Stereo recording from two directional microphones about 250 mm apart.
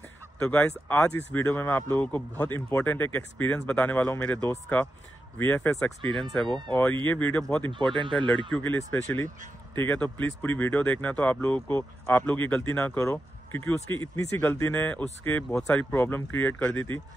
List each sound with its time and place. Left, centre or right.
0.4 s speech: centre
6.0 s speech: centre
6.7 s speech: centre
7.9 s speech: centre
8.5 s speech: centre